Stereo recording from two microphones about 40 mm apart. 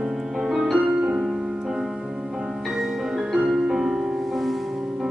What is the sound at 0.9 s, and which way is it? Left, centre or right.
Music, centre.